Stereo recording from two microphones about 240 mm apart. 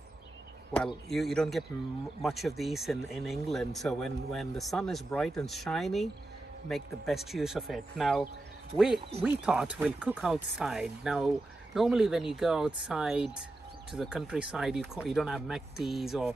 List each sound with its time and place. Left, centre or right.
1.0 s speech: centre